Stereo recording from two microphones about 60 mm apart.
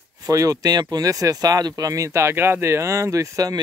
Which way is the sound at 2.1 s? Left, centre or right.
Right.